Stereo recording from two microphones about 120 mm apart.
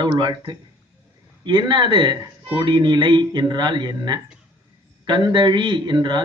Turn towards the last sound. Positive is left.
turn(degrees=-40)  # may be behind; listen again after turning